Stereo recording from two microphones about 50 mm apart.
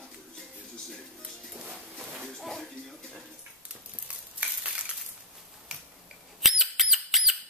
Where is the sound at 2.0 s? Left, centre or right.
Centre.